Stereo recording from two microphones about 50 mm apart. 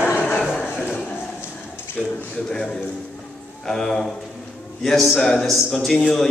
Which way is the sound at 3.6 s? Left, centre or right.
Centre.